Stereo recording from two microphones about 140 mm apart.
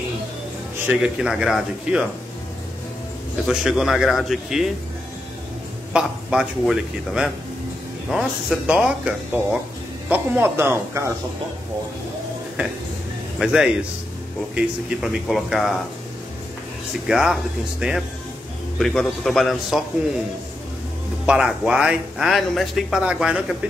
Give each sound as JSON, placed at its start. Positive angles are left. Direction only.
{"t": 0.8, "sound": "speech", "side_deg": -5}
{"t": 3.4, "sound": "speech", "side_deg": -5}
{"t": 5.9, "sound": "speech", "side_deg": -5}
{"t": 13.4, "sound": "speech", "side_deg": -5}
{"t": 17.1, "sound": "speech", "side_deg": -5}
{"t": 21.3, "sound": "speech", "side_deg": -5}